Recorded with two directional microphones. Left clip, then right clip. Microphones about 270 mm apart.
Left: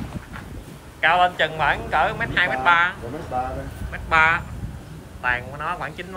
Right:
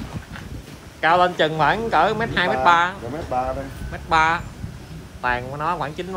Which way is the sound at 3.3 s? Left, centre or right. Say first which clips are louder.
Right 2 dB; right.